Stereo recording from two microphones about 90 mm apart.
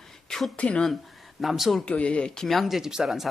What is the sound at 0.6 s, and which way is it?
Speech, 15° left (ahead or behind).